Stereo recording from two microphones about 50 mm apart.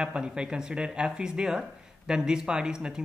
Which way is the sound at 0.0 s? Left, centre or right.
Centre.